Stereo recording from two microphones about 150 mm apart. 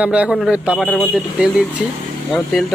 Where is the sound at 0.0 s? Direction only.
10° right (ahead or behind).